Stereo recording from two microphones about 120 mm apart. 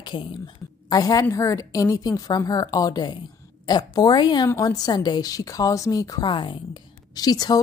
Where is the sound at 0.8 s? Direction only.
35° left (ahead or behind).